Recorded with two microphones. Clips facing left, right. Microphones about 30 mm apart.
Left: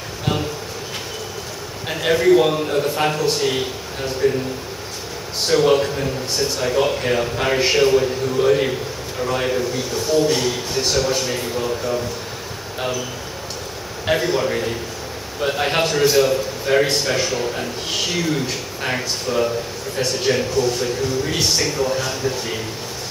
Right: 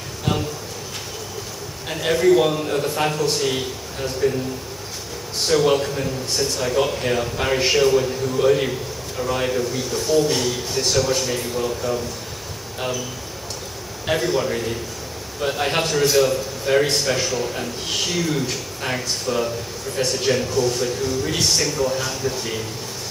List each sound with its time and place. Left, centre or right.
1.9 s a man's voice: centre
5.5 s a man's voice: centre
14.0 s a man's voice: centre